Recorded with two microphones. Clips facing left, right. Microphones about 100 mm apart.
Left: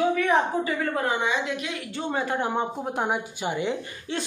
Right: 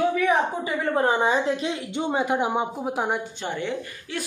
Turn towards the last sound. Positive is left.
turn(degrees=25)  # may be behind; listen again after turning